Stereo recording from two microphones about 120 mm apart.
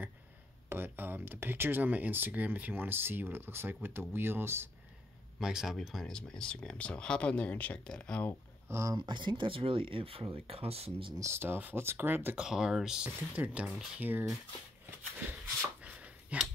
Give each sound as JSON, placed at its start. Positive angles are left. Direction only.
{"t": 0.7, "sound": "speech", "side_deg": -20}
{"t": 5.4, "sound": "speech", "side_deg": -5}
{"t": 8.6, "sound": "speech", "side_deg": -20}
{"t": 8.9, "sound": "speech", "side_deg": -40}
{"t": 11.1, "sound": "speech", "side_deg": -20}
{"t": 12.4, "sound": "speech", "side_deg": -5}
{"t": 15.8, "sound": "a sound", "side_deg": -10}